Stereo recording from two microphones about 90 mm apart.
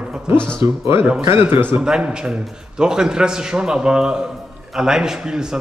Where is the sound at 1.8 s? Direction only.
10° right (ahead or behind).